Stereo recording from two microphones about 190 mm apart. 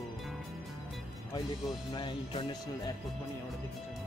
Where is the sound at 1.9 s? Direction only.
25° left (ahead or behind).